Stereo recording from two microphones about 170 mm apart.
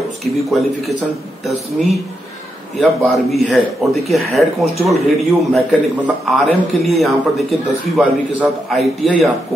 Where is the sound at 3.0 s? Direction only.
Centre (ahead or behind).